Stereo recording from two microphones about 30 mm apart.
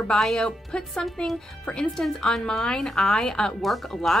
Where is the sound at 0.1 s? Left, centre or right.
Left.